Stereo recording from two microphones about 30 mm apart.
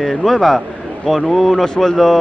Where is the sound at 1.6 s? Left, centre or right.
Left.